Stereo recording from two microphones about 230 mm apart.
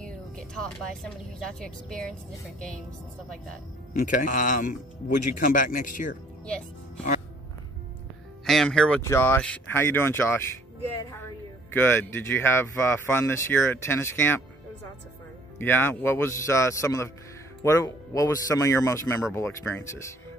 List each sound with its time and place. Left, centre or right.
0.0 s music: centre
1.5 s a woman's voice: centre
4.0 s speech: left
8.5 s speech: centre
15.6 s speech: centre